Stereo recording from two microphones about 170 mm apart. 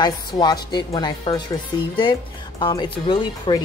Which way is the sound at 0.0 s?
25° left (ahead or behind).